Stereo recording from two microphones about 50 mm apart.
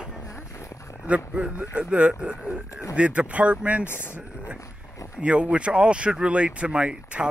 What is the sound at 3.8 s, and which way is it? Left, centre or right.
Speech, left.